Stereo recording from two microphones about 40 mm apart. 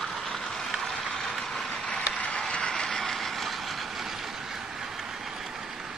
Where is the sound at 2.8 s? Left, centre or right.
Centre.